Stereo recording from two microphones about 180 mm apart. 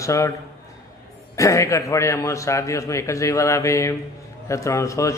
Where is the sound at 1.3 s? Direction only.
15° left (ahead or behind).